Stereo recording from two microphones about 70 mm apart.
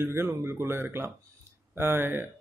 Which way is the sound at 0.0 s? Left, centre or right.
Right.